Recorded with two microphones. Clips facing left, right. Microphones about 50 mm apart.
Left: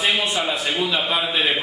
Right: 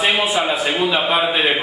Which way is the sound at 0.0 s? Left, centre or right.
Centre.